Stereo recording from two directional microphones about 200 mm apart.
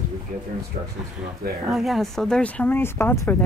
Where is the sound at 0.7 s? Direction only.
40° right (ahead or behind).